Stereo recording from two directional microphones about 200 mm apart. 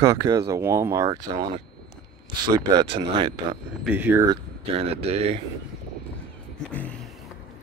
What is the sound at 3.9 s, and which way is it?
Speech, 10° right (ahead or behind).